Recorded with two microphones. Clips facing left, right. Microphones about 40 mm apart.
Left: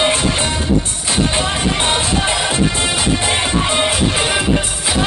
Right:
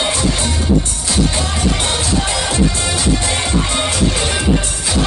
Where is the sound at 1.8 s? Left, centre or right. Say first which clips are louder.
Left 2 dB; left.